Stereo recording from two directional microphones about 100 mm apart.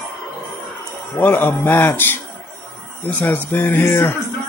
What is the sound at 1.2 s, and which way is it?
Speech, 20° left (ahead or behind).